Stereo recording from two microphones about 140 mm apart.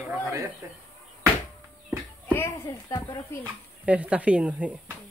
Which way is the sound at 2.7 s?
30° left (ahead or behind).